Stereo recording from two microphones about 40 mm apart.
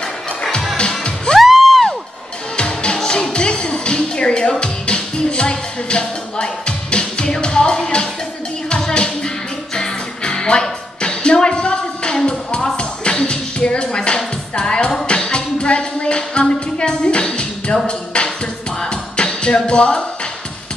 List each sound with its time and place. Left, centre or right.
0.7 s music: left
1.4 s music: centre
2.5 s music: left
17.8 s a sound: left
18.8 s music: left